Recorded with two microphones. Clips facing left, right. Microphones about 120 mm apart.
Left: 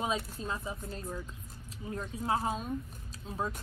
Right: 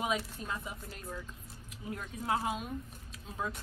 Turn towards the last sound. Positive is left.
turn(degrees=35)  # may be behind; listen again after turning